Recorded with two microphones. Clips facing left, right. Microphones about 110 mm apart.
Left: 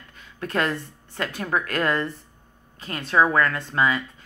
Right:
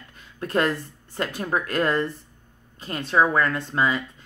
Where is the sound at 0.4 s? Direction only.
35° right (ahead or behind).